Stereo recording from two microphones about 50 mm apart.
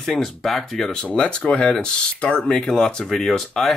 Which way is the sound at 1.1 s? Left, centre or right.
Left.